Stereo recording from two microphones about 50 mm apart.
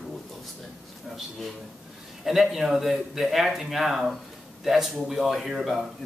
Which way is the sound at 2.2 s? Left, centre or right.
Centre.